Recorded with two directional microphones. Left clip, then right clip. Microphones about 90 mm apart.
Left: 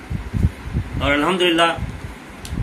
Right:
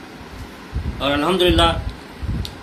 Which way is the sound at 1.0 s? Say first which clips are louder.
Even; 10° left (ahead or behind).